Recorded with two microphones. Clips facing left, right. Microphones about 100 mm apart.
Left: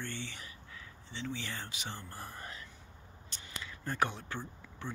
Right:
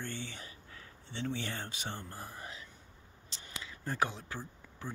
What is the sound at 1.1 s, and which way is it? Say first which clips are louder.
Speech: right 3 dB; 50° right (ahead or behind).